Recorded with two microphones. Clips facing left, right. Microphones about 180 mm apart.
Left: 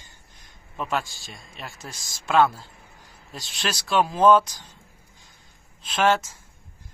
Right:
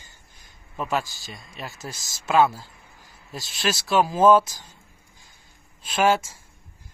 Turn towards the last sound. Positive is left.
turn(degrees=-10)  # may be behind; listen again after turning